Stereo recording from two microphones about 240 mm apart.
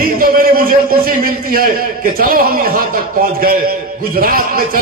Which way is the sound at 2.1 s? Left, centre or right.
Right.